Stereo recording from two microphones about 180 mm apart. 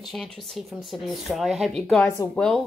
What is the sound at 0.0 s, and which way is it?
Speech, centre (ahead or behind).